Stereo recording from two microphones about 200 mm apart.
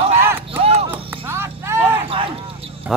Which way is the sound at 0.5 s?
30° right (ahead or behind).